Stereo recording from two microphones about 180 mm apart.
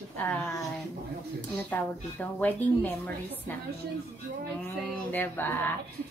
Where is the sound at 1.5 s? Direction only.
10° left (ahead or behind).